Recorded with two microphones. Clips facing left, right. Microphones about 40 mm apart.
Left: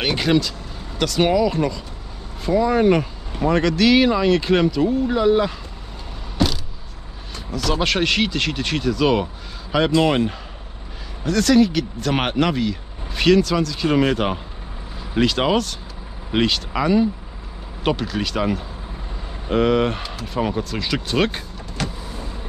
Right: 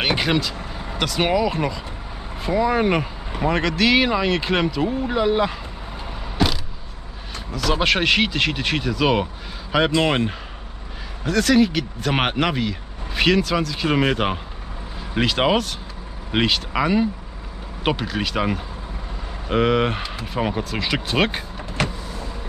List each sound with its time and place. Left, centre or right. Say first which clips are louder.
0.0 s speech: left 2 dB; centre
0.6 s vehicle: right 4 dB; right
0.9 s speech: left 2 dB; centre
6.2 s vehicle: even; centre
7.3 s speech: even; centre
21.5 s vehicle: right 3 dB; right